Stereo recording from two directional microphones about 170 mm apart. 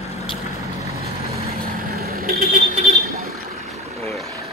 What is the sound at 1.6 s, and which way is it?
Vehicle, 65° right (ahead or behind).